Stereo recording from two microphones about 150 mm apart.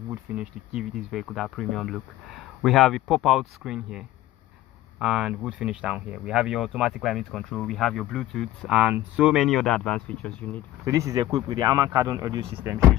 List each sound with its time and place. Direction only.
0.1 s speech: 5° right (ahead or behind); by 10.6 s 10° left (ahead or behind)
10.9 s speech: 20° right (ahead or behind)